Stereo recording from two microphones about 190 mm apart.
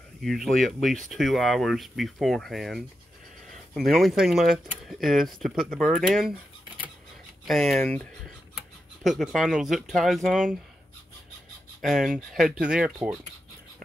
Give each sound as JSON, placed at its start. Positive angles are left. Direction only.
{"t": 0.2, "sound": "speech", "side_deg": 0}
{"t": 7.4, "sound": "speech", "side_deg": 0}
{"t": 11.8, "sound": "speech", "side_deg": 0}